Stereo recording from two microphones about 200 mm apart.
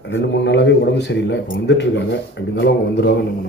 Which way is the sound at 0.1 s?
60° left (ahead or behind).